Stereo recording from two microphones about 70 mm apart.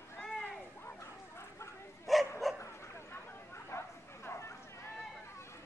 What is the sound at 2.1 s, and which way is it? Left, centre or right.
Bow-wow, centre.